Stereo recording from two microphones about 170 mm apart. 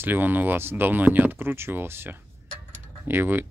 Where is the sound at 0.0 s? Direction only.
10° right (ahead or behind).